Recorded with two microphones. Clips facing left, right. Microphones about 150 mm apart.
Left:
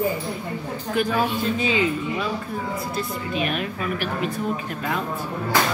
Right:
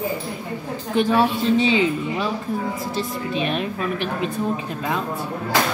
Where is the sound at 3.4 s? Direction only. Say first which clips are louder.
Right 2 dB; 30° right (ahead or behind).